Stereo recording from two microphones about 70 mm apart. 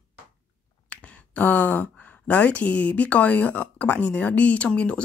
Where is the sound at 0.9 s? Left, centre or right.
Left.